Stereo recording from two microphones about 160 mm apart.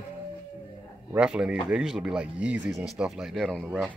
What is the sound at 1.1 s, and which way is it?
A man's voice, 5° right (ahead or behind).